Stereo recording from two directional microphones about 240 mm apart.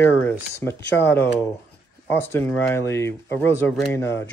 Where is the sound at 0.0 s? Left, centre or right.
Centre.